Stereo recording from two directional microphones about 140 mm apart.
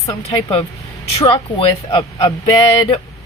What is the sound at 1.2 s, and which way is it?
Speech, 40° left (ahead or behind).